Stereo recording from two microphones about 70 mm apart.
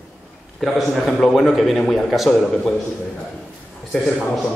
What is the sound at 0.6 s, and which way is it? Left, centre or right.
A man's voice, centre.